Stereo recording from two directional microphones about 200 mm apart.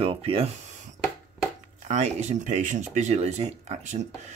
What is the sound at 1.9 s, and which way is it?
Speech, 35° right (ahead or behind).